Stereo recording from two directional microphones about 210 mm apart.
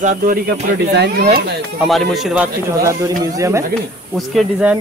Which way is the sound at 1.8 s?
Centre (ahead or behind).